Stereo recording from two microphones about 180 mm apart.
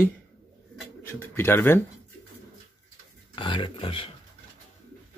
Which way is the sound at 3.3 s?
25° left (ahead or behind).